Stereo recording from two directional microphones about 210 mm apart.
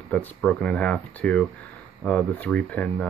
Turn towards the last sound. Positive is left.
turn(degrees=5)  # may be behind; listen again after turning